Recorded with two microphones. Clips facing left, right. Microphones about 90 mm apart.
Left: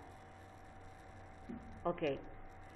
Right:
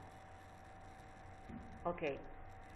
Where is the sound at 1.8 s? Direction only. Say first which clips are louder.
Left 3 dB; 5° right (ahead or behind).